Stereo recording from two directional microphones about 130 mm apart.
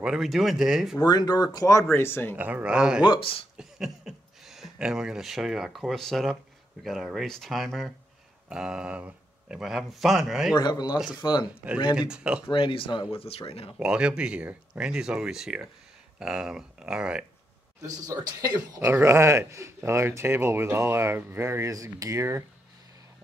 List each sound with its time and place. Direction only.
0.0 s speech: 5° right (ahead or behind)
1.0 s speech: 30° left (ahead or behind)
2.3 s speech: 15° right (ahead or behind)
3.1 s speech: 45° left (ahead or behind)
3.5 s a sound: 5° right (ahead or behind)
6.8 s speech: centre (ahead or behind)
10.5 s speech: 35° left (ahead or behind)
11.9 s speech: 10° right (ahead or behind)
12.4 s speech: 40° left (ahead or behind)
13.7 s speech: 5° right (ahead or behind)
17.8 s speech: 30° right (ahead or behind)
18.9 s speech: 20° right (ahead or behind)